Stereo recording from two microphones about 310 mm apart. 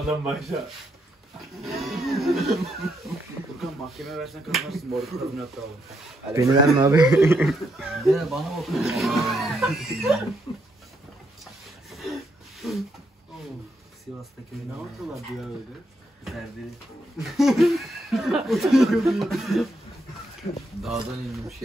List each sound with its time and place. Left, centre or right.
0.2 s speech: centre
1.6 s a sound: centre
3.5 s speech: centre
6.3 s speech: centre
10.5 s a sound: centre
11.9 s rub: centre
12.6 s speech: centre
15.0 s speech: centre
17.2 s speech: centre
20.4 s speech: centre
20.8 s speech: centre